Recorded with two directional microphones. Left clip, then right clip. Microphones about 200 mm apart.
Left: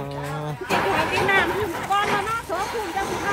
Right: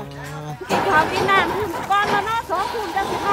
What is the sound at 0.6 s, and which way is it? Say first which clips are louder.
Speech: right 4 dB; 55° right (ahead or behind).